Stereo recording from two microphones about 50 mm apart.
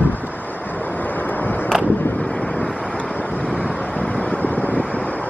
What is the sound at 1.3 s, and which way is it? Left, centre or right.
Vehicle, left.